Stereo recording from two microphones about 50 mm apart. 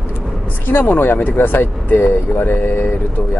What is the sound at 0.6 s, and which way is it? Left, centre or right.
Speech, left.